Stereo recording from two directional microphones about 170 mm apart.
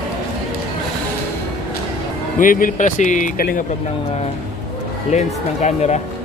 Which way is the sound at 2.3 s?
55° left (ahead or behind).